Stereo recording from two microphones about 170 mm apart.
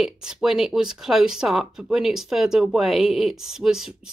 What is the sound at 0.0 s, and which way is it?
Speech, 5° right (ahead or behind).